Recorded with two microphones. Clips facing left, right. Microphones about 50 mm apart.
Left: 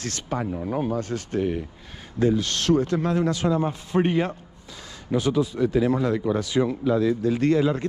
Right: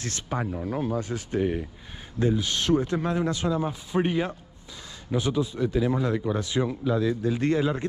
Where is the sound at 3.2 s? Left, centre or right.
Left.